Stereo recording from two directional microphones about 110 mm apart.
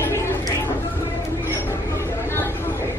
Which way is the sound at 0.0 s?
25° left (ahead or behind).